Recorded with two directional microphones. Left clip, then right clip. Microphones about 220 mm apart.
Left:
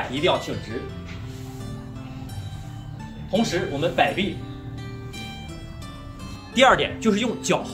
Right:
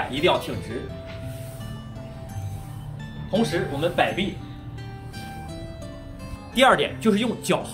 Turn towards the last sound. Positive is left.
turn(degrees=0)  # may be behind; listen again after turning